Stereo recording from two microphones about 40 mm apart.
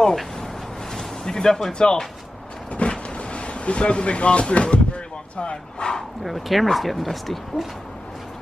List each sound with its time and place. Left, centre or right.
0.0 s a sound: centre
1.7 s speech: left
6.2 s speech: centre